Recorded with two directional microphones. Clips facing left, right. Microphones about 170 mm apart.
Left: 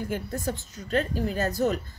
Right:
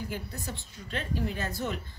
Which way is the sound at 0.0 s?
50° left (ahead or behind).